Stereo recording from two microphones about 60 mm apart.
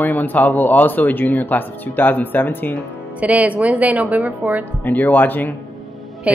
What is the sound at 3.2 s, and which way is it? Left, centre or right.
A woman's voice, right.